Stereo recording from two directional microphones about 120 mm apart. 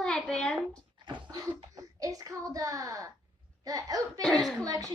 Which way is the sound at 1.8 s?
30° right (ahead or behind).